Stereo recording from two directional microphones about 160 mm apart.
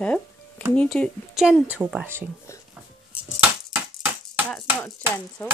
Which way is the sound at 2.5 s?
15° left (ahead or behind).